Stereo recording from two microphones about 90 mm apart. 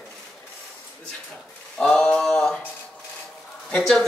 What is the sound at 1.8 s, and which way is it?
Speech, 10° left (ahead or behind).